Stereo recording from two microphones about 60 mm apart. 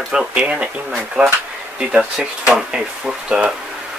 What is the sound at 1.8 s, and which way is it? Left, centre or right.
Speech, centre.